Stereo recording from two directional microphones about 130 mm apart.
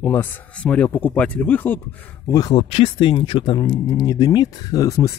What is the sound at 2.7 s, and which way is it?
Speech, 45° left (ahead or behind).